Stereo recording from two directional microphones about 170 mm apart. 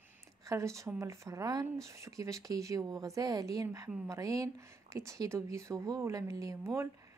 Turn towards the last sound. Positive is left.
turn(degrees=-20)  # may be behind; listen again after turning